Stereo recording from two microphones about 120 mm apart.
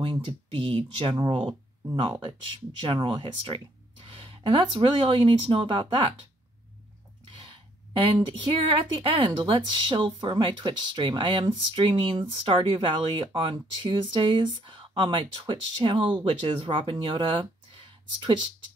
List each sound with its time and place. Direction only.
0.0 s speech: 50° right (ahead or behind)
2.8 s speech: 45° right (ahead or behind)
7.2 s speech: 45° right (ahead or behind)